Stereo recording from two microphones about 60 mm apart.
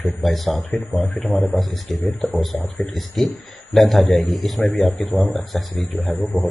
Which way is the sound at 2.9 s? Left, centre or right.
Centre.